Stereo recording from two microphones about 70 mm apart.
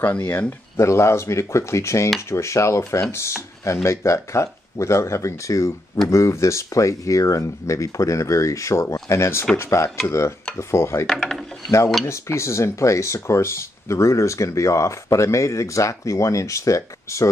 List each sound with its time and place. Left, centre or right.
0.0 s speech: left
0.3 s speech: left
11.1 s speech: centre
12.1 s speech: left